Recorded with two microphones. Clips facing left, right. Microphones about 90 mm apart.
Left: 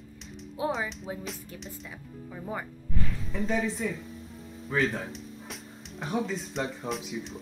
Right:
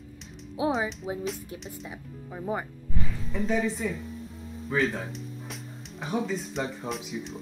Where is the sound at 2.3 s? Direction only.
15° right (ahead or behind).